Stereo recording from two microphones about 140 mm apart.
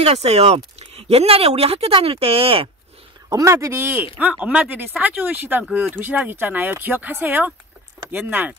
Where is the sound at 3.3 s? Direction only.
25° right (ahead or behind).